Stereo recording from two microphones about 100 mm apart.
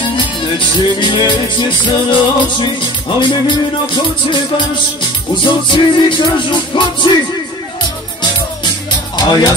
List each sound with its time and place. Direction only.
0.7 s music: 50° left (ahead or behind)
9.1 s speech: 45° left (ahead or behind)